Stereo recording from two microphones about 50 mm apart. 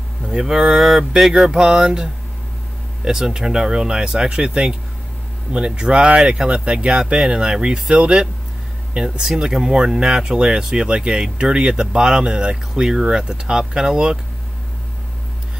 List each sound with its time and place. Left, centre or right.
0.2 s speech: centre
5.8 s speech: right